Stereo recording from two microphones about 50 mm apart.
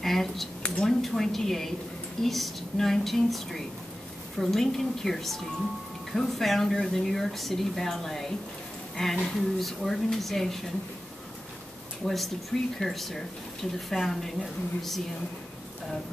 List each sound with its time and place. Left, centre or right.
0.0 s speech: centre
0.6 s a sound: centre
0.8 s speech: centre
12.0 s speech: centre